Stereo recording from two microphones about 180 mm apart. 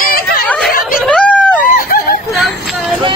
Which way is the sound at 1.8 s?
55° left (ahead or behind).